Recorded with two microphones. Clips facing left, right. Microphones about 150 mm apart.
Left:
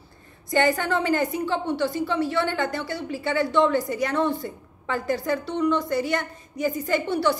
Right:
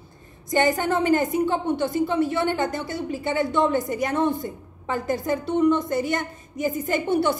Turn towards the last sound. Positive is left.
turn(degrees=-20)  # may be behind; listen again after turning